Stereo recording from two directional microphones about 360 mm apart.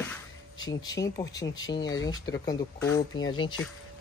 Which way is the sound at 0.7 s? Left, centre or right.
Centre.